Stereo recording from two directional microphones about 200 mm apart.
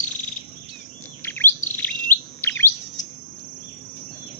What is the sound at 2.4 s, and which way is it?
Chirp, 10° left (ahead or behind).